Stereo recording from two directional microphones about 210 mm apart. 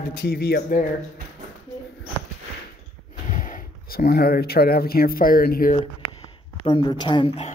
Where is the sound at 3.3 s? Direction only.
40° left (ahead or behind).